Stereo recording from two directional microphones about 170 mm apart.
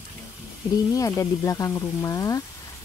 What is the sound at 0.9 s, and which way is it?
Speech, 20° left (ahead or behind).